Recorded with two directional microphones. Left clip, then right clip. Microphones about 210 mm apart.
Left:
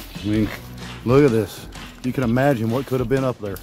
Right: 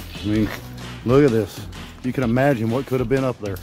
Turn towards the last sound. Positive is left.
turn(degrees=0)  # may be behind; listen again after turning